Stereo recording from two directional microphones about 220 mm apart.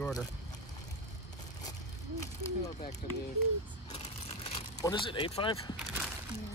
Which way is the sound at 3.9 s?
25° left (ahead or behind).